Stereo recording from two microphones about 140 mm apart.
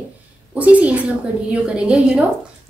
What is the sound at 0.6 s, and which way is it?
A woman's voice, 10° right (ahead or behind).